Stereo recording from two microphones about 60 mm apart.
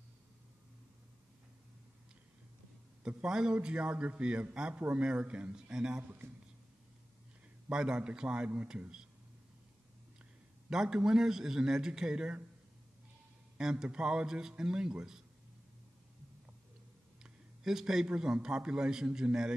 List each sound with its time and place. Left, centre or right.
3.3 s a man's voice: centre
7.7 s a man's voice: centre
10.7 s a man's voice: centre
13.6 s a man's voice: centre
17.2 s a man's voice: centre